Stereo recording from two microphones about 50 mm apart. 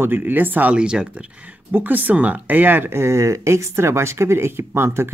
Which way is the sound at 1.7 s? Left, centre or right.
Right.